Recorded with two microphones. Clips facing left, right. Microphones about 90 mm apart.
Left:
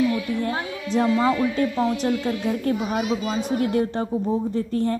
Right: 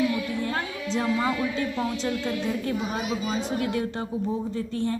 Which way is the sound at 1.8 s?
35° left (ahead or behind).